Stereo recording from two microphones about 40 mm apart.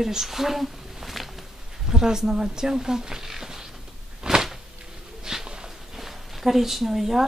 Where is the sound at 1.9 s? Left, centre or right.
Centre.